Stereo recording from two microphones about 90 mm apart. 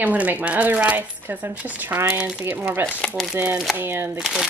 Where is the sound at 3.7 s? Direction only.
25° right (ahead or behind).